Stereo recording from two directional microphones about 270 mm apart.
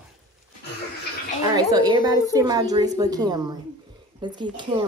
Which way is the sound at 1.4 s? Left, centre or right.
Centre.